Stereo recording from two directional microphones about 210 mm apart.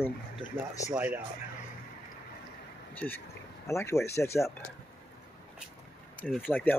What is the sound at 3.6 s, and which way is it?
Speech, 15° left (ahead or behind).